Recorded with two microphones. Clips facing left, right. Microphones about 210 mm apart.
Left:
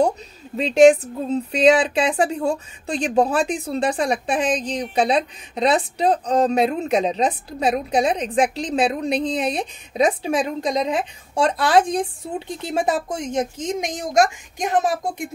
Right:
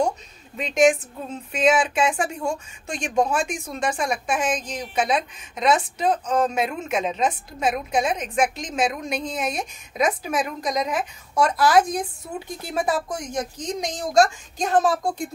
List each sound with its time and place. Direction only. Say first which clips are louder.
0.6 s speech: left 6 dB; 35° left (ahead or behind); by 14.9 s 15° left (ahead or behind)